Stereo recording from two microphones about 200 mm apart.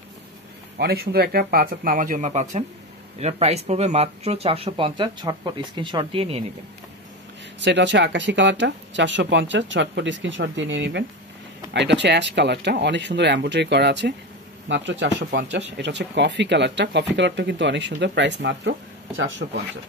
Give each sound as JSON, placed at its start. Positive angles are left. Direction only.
{"t": 0.7, "sound": "speech", "side_deg": -50}
{"t": 7.6, "sound": "speech", "side_deg": -65}